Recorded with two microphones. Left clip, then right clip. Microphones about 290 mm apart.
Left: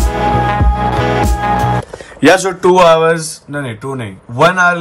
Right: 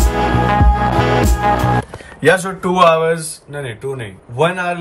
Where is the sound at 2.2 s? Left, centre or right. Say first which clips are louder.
Left 4 dB; left.